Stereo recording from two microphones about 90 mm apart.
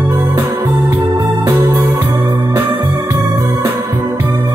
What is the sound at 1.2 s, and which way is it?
Music, 20° right (ahead or behind).